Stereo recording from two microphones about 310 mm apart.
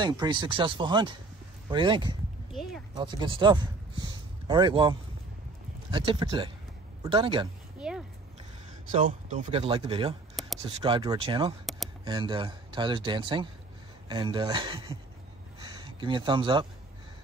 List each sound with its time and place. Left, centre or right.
0.0 s speech: centre
2.5 s speech: centre
3.0 s speech: centre
8.9 s speech: right
10.4 s a sound: centre
10.8 s speech: centre